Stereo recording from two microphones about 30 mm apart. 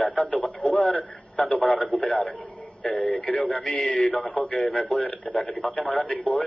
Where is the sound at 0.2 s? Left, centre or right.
Left.